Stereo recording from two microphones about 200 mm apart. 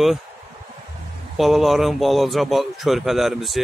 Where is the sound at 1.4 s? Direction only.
Centre (ahead or behind).